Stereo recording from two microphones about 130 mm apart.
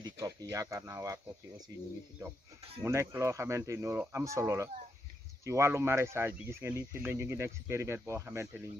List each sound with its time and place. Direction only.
0.0 s speech: 30° right (ahead or behind)